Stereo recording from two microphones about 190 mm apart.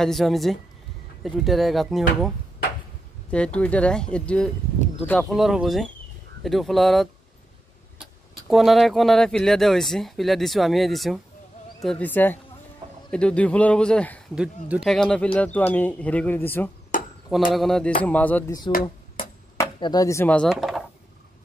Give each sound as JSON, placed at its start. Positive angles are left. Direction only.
{"t": 0.0, "sound": "speech", "side_deg": 0}
{"t": 14.3, "sound": "speech", "side_deg": -5}
{"t": 16.9, "sound": "chop", "side_deg": 45}
{"t": 17.5, "sound": "speech", "side_deg": 0}
{"t": 18.7, "sound": "speech", "side_deg": 25}
{"t": 20.5, "sound": "a sound", "side_deg": 0}